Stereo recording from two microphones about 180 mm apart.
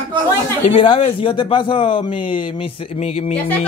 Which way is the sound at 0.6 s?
30° left (ahead or behind).